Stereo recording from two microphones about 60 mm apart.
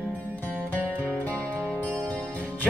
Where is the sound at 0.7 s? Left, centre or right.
Left.